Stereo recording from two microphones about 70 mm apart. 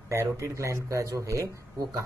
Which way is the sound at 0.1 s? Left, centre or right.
Right.